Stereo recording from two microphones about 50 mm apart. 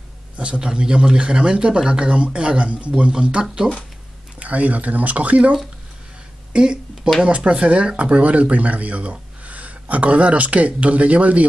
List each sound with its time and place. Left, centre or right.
0.4 s speech: centre
4.4 s speech: right
6.5 s speech: centre